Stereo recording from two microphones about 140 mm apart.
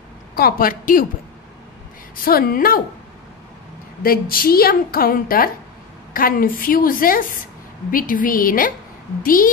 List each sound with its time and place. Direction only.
0.4 s a woman's voice: 90° left
2.2 s a woman's voice: 90° left
4.0 s a woman's voice: 90° left
7.9 s a woman's voice: 80° left